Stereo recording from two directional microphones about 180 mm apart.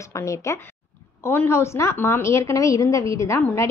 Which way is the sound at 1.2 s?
15° left (ahead or behind).